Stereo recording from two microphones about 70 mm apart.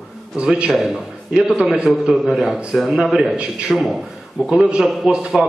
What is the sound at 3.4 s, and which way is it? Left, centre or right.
A man's voice, centre.